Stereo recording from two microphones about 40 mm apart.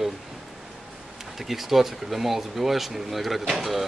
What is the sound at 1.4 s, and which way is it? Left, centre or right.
A man's voice, centre.